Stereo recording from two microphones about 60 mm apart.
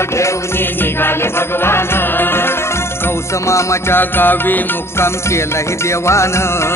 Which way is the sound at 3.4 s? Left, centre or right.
Left.